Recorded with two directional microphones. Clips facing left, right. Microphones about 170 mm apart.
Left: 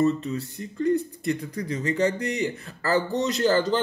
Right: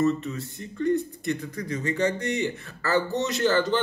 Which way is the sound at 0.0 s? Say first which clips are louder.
Left 1 dB; 30° left (ahead or behind).